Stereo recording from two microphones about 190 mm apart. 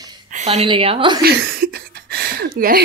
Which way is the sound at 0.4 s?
35° right (ahead or behind).